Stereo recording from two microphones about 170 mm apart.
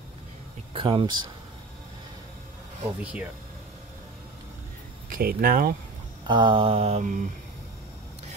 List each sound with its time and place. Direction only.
0.7 s speech: 30° right (ahead or behind)
3.0 s speech: 5° right (ahead or behind)
5.1 s speech: 55° right (ahead or behind)
6.2 s mantra: 25° right (ahead or behind); by 7.2 s 45° right (ahead or behind)